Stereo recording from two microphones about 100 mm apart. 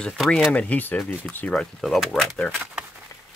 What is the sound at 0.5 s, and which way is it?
Speech, 15° left (ahead or behind).